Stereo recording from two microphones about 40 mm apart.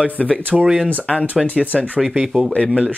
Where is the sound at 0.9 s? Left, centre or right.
Left.